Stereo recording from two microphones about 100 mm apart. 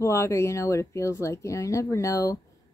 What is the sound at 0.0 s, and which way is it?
Speech, 30° left (ahead or behind).